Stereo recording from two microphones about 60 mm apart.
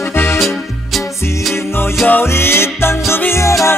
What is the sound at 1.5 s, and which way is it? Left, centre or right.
Music, left.